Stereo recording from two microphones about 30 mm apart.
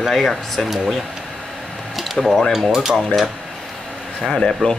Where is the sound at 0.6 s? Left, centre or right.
Centre.